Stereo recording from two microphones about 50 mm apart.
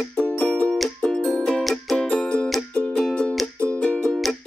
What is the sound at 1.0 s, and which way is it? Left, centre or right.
Music, centre.